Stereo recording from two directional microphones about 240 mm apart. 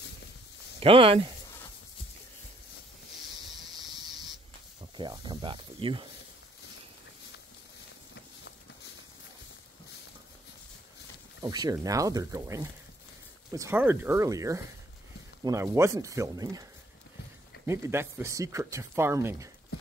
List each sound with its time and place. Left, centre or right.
0.7 s speech: right
3.5 s squeal: centre
4.9 s speech: centre
11.4 s speech: centre
17.6 s speech: centre